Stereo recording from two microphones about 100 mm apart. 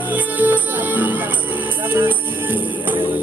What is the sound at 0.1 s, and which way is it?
Music, 15° right (ahead or behind).